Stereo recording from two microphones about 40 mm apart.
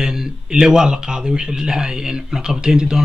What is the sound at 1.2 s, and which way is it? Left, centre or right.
Speech, right.